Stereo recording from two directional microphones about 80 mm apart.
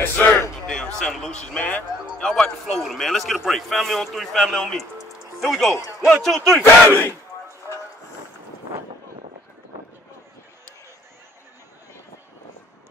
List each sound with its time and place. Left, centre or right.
0.0 s a sound: left
0.9 s a man's voice: centre
6.9 s speech: left